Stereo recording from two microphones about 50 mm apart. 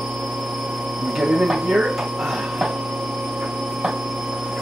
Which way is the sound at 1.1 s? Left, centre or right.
Centre.